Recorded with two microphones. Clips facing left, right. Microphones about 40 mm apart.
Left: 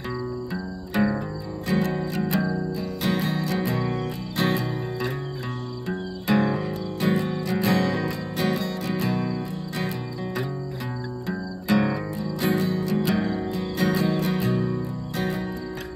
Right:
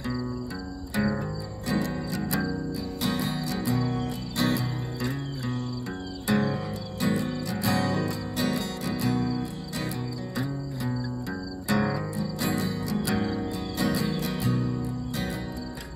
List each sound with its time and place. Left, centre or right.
1.7 s music: left
2.3 s music: left
3.0 s music: left